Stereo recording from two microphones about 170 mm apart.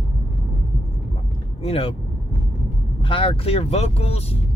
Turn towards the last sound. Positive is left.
turn(degrees=35)  # may be behind; listen again after turning